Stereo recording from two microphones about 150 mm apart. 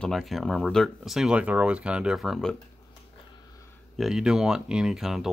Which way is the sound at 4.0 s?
5° right (ahead or behind).